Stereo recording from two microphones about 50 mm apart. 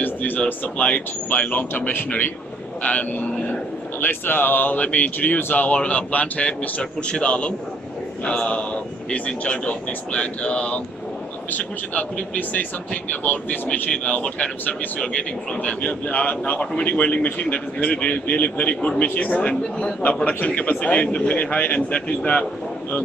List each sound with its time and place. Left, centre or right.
0.0 s a sound: left
0.7 s a man's voice: left
4.0 s a man's voice: left
6.8 s a man's voice: centre
15.5 s a man's voice: left